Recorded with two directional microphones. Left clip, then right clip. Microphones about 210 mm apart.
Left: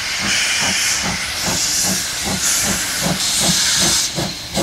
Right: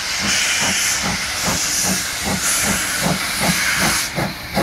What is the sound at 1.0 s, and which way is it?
Hiss, 5° right (ahead or behind).